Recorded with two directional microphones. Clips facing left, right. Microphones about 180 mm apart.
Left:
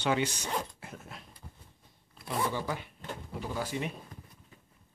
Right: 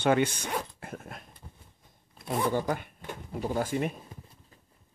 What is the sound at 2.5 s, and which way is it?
Speech, 50° right (ahead or behind).